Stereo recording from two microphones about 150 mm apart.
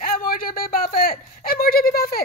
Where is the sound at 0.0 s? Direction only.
70° left (ahead or behind).